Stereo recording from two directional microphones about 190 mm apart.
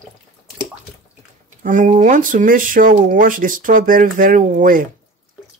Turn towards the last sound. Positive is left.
turn(degrees=-45)  # may be behind; listen again after turning